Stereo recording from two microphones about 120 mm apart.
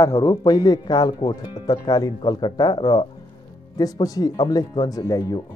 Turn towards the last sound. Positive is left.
turn(degrees=30)  # may be behind; listen again after turning